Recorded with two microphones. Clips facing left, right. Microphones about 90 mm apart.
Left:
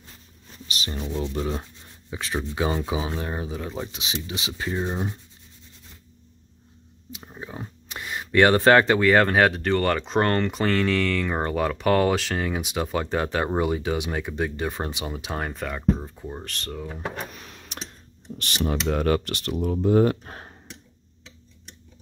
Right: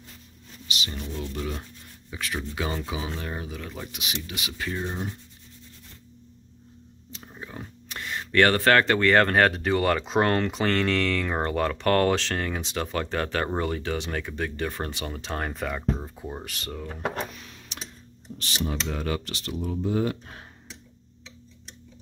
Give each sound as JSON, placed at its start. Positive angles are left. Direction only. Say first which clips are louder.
{"t": 0.7, "sound": "speech", "louder": "left 1 dB", "side_deg": 40}
{"t": 0.9, "sound": "speech", "louder": "left 10 dB", "side_deg": 20}
{"t": 7.1, "sound": "a sound", "louder": "left 3 dB", "side_deg": 15}
{"t": 8.9, "sound": "speech", "louder": "left 2 dB", "side_deg": 5}
{"t": 17.4, "sound": "a sound", "louder": "left 2 dB", "side_deg": 55}
{"t": 18.4, "sound": "speech", "louder": "left 4 dB", "side_deg": 60}